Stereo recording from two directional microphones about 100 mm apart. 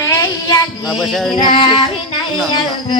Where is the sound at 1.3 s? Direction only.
60° left (ahead or behind).